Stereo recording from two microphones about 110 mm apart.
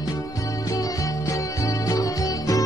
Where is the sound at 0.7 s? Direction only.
30° left (ahead or behind).